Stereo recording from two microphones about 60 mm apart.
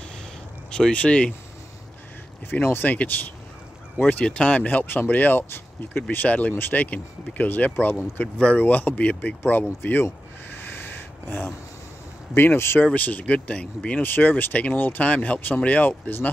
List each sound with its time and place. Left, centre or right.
0.7 s speech: centre
2.6 s speech: left
10.6 s a sound: left
12.4 s speech: left
12.8 s speech: left